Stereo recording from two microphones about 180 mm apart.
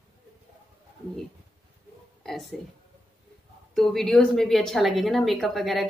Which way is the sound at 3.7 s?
Centre (ahead or behind).